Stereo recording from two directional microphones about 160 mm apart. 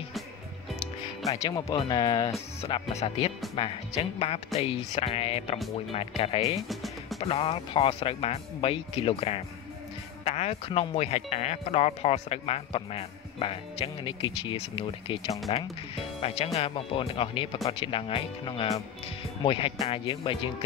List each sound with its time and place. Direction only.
1.4 s speech: 20° left (ahead or behind)
2.6 s speech: 40° left (ahead or behind)
6.7 s music: centre (ahead or behind)
7.2 s speech: 35° left (ahead or behind)